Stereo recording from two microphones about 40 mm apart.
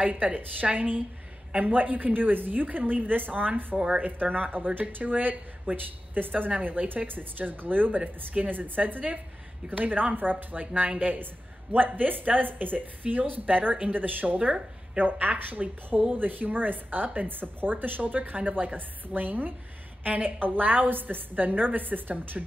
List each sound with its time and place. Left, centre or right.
0.1 s a woman's voice: right
3.7 s speech: centre
4.0 s a woman's voice: right
6.5 s a woman's voice: right
11.7 s a woman's voice: right